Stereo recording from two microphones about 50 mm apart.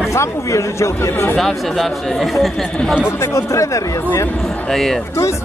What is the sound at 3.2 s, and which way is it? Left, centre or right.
Speech, left.